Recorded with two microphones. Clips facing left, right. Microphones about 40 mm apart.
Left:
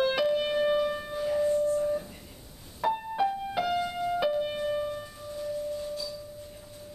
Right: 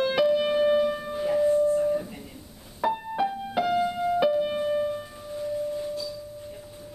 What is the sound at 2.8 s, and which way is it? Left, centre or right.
Music, centre.